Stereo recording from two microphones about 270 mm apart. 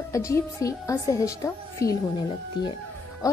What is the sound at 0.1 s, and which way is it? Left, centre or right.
A woman's voice, centre.